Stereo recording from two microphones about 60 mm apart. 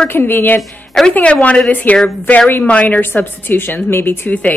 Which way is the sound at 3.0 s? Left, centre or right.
Left.